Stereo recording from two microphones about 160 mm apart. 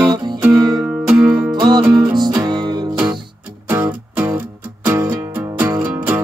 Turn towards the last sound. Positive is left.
turn(degrees=-15)  # may be behind; listen again after turning